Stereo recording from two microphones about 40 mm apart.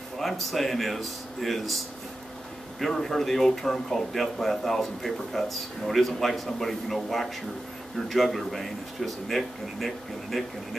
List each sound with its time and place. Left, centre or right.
0.2 s speech: centre
2.8 s speech: centre